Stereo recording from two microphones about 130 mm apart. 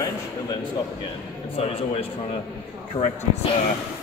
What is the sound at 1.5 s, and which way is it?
A man's voice, 50° left (ahead or behind).